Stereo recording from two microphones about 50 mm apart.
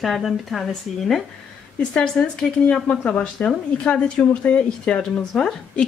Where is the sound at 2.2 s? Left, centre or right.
Left.